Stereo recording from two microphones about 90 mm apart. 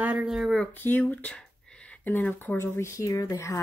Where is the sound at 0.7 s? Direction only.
20° left (ahead or behind); by 3.5 s 35° left (ahead or behind).